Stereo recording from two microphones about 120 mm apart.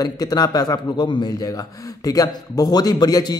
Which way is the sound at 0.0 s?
30° left (ahead or behind).